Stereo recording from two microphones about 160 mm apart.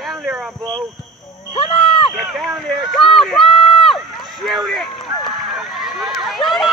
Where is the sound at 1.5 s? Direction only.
35° left (ahead or behind).